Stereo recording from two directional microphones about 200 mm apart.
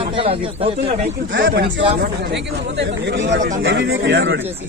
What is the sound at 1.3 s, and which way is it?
Speech, 55° right (ahead or behind).